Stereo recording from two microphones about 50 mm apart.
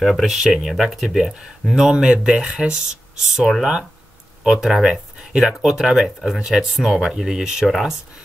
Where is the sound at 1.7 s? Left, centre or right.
Centre.